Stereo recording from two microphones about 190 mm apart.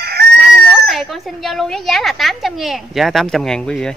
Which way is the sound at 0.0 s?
55° right (ahead or behind).